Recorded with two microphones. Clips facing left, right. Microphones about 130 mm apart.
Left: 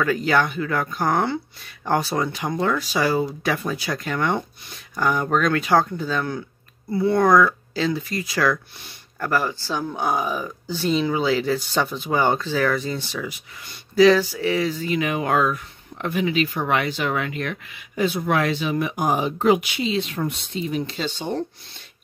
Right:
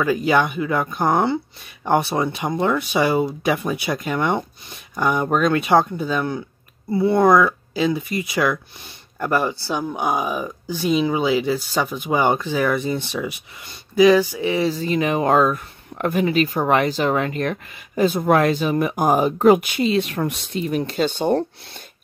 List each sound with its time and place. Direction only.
0.0 s speech: 20° right (ahead or behind)
14.7 s speech: 35° right (ahead or behind); by 21.5 s 55° right (ahead or behind)